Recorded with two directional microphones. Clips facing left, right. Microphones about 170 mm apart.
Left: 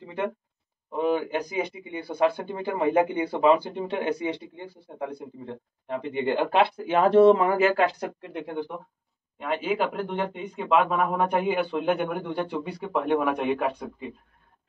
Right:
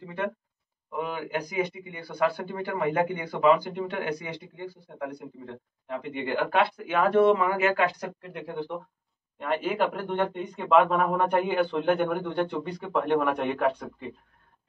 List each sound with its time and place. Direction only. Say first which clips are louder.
0.0 s speech: left 2 dB; 20° left (ahead or behind)
9.4 s speech: even; 5° left (ahead or behind)